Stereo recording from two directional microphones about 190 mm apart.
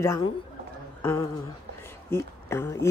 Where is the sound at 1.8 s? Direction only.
15° left (ahead or behind).